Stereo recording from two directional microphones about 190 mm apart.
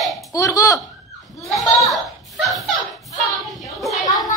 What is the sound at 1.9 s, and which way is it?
Dog, centre (ahead or behind).